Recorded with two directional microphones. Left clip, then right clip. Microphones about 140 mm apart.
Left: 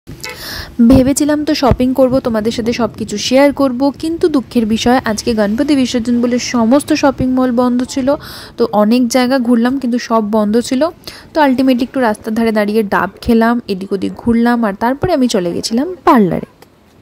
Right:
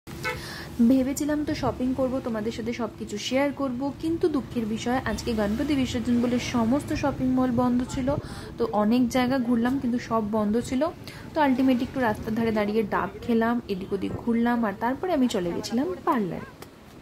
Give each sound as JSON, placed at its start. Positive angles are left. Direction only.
{"t": 0.5, "sound": "a woman's voice", "side_deg": 70}